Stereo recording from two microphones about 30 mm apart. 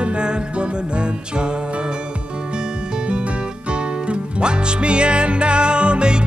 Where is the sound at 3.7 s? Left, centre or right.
Right.